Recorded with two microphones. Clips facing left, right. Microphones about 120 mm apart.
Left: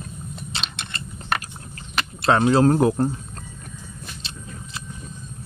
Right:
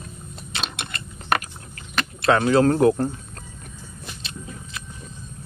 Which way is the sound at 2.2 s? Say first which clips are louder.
Even; 30° left (ahead or behind).